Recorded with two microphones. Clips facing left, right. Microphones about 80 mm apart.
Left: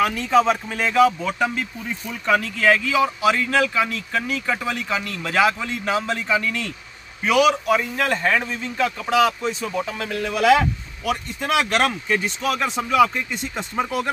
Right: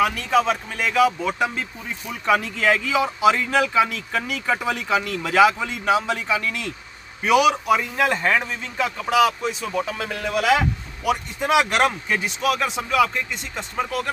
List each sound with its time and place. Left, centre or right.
0.3 s speech: centre